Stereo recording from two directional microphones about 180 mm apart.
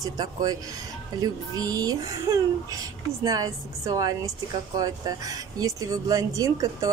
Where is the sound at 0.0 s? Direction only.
20° right (ahead or behind).